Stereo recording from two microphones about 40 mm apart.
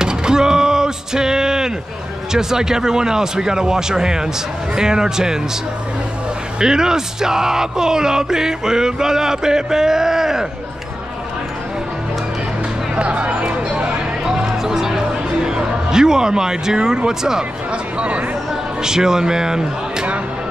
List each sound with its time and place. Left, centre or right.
0.0 s a sound: centre
2.3 s speech: centre
6.6 s speech: centre
12.9 s music: right
14.2 s music: centre
17.9 s speech: right
18.8 s speech: centre